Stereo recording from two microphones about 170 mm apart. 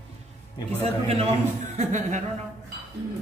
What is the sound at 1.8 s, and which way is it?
Speech, 45° right (ahead or behind).